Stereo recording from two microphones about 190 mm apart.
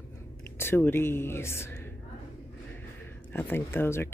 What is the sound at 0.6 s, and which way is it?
Speech, 10° left (ahead or behind).